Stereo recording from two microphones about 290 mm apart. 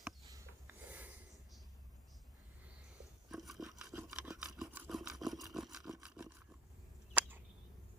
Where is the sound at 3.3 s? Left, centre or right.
Centre.